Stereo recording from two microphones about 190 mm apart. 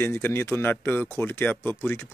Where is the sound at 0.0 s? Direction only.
10° left (ahead or behind).